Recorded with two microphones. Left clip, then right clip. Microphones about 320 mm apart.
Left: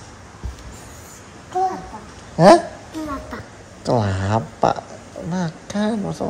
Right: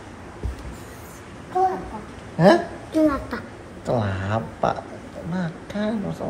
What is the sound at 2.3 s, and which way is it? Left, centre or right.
Speech, left.